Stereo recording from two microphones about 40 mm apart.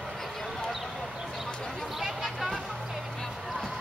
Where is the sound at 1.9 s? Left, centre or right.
Centre.